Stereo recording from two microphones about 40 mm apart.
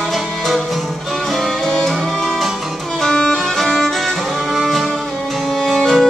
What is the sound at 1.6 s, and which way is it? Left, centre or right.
Music, centre.